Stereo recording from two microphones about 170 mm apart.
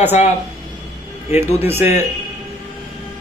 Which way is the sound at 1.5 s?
15° right (ahead or behind).